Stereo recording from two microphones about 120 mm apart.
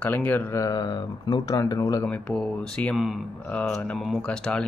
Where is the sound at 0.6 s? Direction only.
35° left (ahead or behind).